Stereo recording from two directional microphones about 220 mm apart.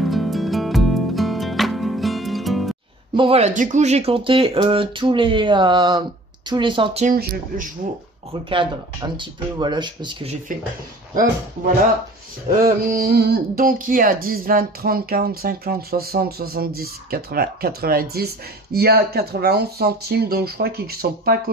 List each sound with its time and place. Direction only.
0.0 s music: centre (ahead or behind)
3.2 s speech: 25° right (ahead or behind)
8.3 s speech: 25° right (ahead or behind)
12.6 s speech: 40° right (ahead or behind)